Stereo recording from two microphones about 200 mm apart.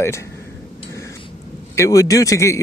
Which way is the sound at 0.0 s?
15° left (ahead or behind).